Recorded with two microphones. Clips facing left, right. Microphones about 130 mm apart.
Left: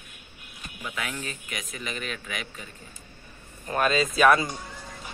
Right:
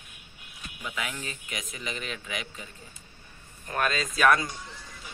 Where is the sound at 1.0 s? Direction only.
20° right (ahead or behind).